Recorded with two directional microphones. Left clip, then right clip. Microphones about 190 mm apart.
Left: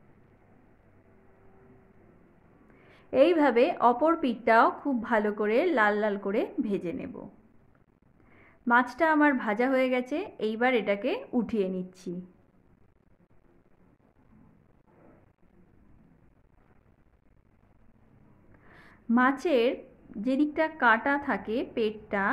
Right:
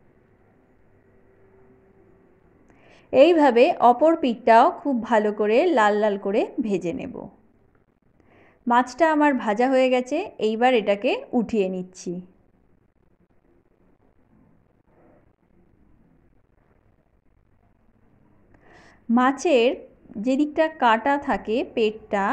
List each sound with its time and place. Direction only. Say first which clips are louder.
2.8 s a woman's voice: right 7 dB; 20° right (ahead or behind)
8.3 s a woman's voice: right 3 dB; 20° right (ahead or behind)
18.6 s a woman's voice: right 4 dB; 20° right (ahead or behind)